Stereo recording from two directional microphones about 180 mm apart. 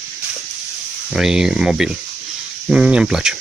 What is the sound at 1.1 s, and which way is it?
Speech, 5° right (ahead or behind).